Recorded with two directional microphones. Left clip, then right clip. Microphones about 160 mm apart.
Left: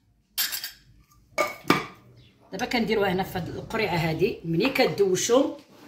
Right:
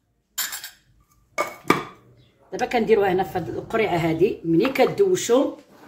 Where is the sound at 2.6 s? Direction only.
30° right (ahead or behind).